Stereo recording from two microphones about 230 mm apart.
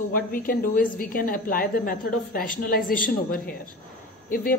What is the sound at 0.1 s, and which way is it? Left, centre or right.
Speech, left.